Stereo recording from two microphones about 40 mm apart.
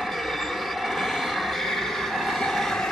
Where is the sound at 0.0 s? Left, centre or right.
Centre.